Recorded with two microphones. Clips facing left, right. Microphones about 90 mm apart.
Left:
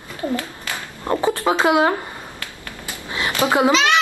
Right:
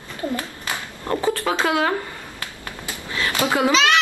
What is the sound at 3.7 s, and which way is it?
Speech, centre (ahead or behind).